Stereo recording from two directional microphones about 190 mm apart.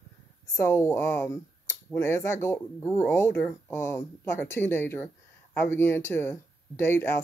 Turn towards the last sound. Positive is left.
turn(degrees=10)  # may be behind; listen again after turning